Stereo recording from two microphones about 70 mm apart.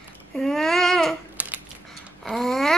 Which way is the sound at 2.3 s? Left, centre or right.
Centre.